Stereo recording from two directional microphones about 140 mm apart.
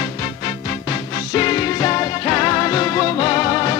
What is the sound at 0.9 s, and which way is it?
Music, 30° left (ahead or behind).